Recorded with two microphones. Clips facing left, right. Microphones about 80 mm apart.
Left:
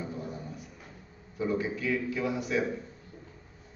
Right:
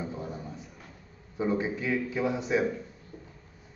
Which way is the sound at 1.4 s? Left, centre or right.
Right.